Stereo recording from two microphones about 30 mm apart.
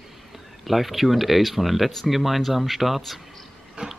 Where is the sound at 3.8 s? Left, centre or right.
Right.